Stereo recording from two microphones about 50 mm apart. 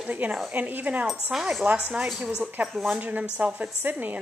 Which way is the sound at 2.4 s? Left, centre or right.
Right.